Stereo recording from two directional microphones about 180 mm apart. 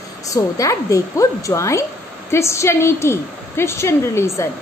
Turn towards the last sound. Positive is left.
turn(degrees=15)  # may be behind; listen again after turning